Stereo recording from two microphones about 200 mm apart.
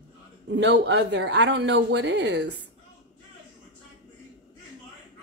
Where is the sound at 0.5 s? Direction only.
60° right (ahead or behind).